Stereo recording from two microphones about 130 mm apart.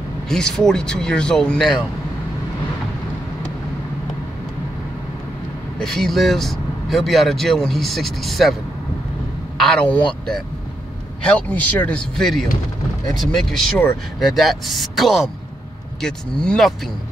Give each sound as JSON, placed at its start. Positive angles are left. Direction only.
{"t": 0.3, "sound": "speech", "side_deg": 5}
{"t": 5.8, "sound": "speech", "side_deg": 5}
{"t": 9.6, "sound": "speech", "side_deg": 5}
{"t": 11.2, "sound": "speech", "side_deg": 10}